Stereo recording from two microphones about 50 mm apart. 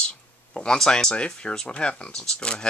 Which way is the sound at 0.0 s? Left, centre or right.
Centre.